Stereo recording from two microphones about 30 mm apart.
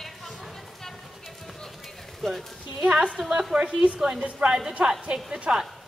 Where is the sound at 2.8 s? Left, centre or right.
Right.